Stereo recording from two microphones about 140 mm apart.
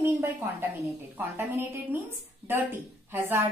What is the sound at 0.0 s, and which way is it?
A woman's voice, 15° right (ahead or behind).